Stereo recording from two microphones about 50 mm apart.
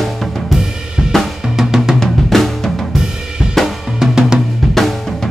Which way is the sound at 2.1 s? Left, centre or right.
Centre.